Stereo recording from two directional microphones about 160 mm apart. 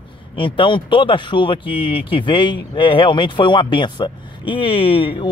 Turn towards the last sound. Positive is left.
turn(degrees=35)  # may be behind; listen again after turning